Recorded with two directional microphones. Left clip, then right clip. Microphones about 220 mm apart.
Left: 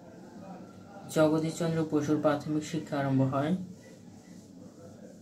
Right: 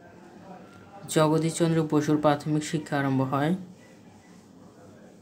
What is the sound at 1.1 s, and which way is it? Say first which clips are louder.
Speech: right 3 dB; 55° right (ahead or behind).